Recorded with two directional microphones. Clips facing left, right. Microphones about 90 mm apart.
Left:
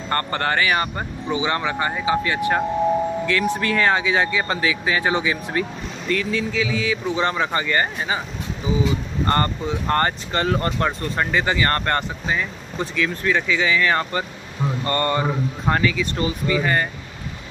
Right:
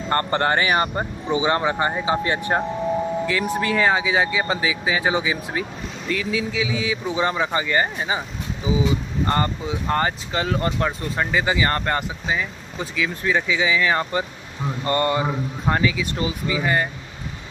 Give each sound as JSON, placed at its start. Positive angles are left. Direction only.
{"t": 0.1, "sound": "speech", "side_deg": -25}
{"t": 3.3, "sound": "speech", "side_deg": -15}
{"t": 9.2, "sound": "speech", "side_deg": -10}